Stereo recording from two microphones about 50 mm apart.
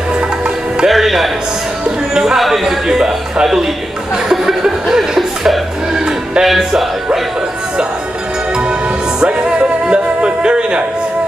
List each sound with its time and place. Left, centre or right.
0.8 s music: centre
1.9 s speech: centre
2.3 s speech: centre
4.3 s music: centre
6.4 s music: centre
9.2 s music: centre